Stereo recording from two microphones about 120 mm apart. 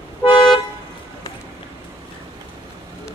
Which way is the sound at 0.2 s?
45° left (ahead or behind).